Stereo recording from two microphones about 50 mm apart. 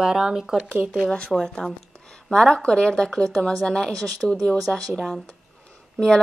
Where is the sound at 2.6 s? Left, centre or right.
Centre.